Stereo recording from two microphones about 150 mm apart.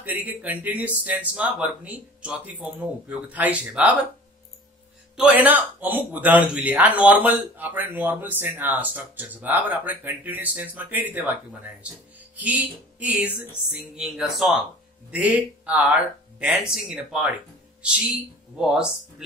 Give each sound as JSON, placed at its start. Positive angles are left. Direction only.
{"t": 0.0, "sound": "speech", "side_deg": -10}
{"t": 5.1, "sound": "speech", "side_deg": -10}
{"t": 18.6, "sound": "speech", "side_deg": -5}